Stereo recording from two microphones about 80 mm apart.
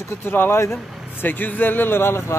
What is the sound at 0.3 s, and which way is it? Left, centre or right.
Speech, left.